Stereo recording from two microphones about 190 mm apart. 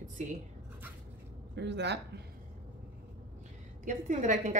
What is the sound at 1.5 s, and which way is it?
Speech, 65° right (ahead or behind).